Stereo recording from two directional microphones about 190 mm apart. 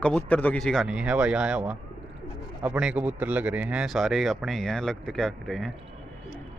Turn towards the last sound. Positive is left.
turn(degrees=0)  # may be behind; listen again after turning